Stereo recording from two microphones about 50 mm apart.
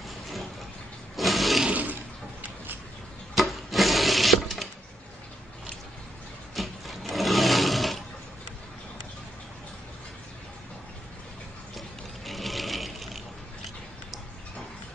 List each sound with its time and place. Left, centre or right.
1.1 s toilet flush: centre
1.7 s toilet flush: right
3.3 s a sound: centre
6.5 s sewing machine: centre
12.3 s sewing machine: centre